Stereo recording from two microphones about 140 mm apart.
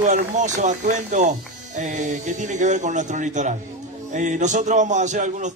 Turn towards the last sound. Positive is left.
turn(degrees=-60)  # may be behind; listen again after turning